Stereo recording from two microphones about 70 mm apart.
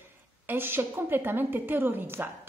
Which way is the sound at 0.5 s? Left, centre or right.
Right.